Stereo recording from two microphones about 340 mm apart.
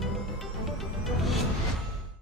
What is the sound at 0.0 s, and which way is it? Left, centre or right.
Music, centre.